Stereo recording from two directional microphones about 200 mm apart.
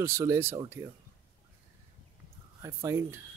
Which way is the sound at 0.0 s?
15° right (ahead or behind).